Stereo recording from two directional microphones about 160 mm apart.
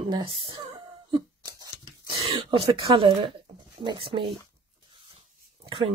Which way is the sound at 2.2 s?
35° right (ahead or behind).